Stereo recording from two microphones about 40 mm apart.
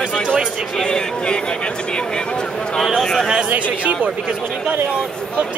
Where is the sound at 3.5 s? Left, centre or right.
Right.